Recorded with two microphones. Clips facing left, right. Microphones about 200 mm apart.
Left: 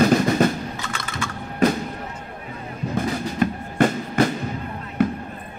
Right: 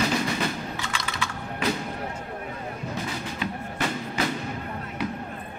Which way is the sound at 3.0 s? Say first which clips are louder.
Left 12 dB; 50° left (ahead or behind).